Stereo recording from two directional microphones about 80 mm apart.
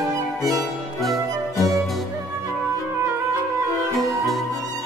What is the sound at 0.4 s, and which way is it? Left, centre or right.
Music, right.